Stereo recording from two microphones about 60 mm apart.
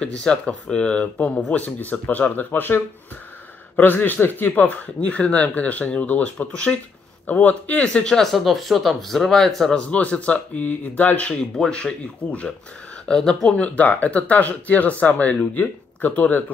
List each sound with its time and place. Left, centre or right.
0.0 s speech: centre
9.8 s speech: left
13.1 s speech: centre; by 16.5 s left